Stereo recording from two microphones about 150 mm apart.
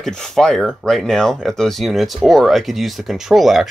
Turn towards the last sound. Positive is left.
turn(degrees=0)  # may be behind; listen again after turning